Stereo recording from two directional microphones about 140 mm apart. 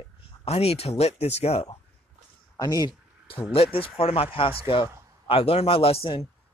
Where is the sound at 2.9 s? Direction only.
40° left (ahead or behind).